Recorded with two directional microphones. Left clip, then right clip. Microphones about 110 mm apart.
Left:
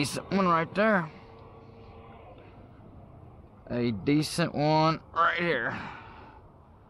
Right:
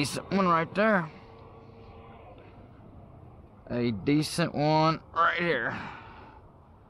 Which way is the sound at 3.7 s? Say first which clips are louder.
Even; 15° right (ahead or behind).